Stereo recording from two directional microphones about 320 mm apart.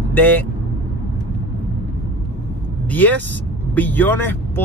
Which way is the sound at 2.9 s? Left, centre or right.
Centre.